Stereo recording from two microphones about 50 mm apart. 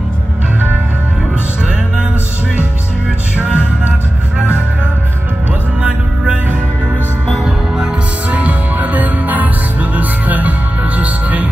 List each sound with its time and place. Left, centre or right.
3.3 s music: right
5.8 s music: right
7.4 s music: centre
8.3 s music: right